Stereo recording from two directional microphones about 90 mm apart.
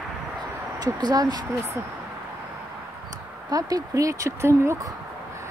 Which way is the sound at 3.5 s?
40° right (ahead or behind).